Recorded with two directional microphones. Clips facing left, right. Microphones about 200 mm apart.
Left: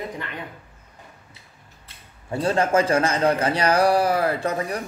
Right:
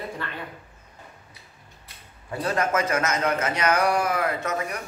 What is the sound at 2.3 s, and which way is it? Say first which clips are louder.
A man's voice: left 4 dB; 30° left (ahead or behind).